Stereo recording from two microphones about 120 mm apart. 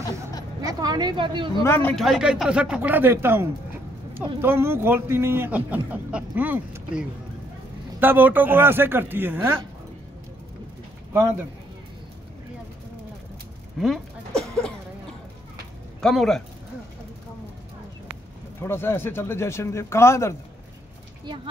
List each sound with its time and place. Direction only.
0.6 s a sound: 30° right (ahead or behind)
1.6 s a man's voice: 20° left (ahead or behind)
2.0 s a man's voice: centre (ahead or behind); by 9.6 s 20° right (ahead or behind)
11.1 s a man's voice: 20° right (ahead or behind)
13.7 s a sound: centre (ahead or behind)
16.0 s speech: 5° left (ahead or behind)
18.6 s a man's voice: 20° left (ahead or behind)